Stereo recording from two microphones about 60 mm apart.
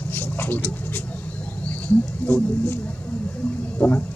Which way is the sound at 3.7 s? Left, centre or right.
Left.